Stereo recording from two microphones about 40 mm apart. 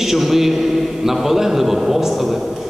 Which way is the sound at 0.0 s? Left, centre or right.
Centre.